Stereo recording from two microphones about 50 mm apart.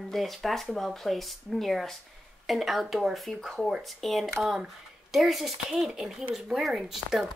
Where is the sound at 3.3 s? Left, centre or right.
Centre.